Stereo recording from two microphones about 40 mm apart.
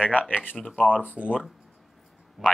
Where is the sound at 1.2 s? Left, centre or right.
Right.